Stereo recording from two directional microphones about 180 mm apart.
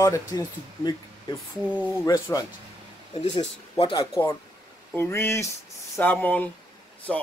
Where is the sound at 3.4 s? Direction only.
30° left (ahead or behind).